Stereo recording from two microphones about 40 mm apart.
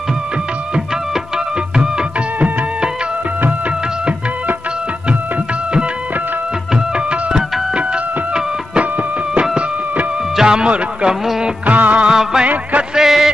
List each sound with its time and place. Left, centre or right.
10.3 s music: centre
11.6 s music of bollywood: right
12.1 s music: centre